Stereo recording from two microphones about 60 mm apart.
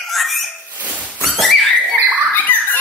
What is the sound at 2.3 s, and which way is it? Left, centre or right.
Bird, left.